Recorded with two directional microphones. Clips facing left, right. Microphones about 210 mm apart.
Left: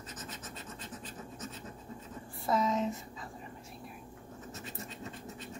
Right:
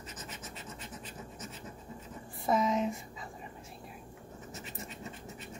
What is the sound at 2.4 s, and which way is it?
Speech, 15° right (ahead or behind).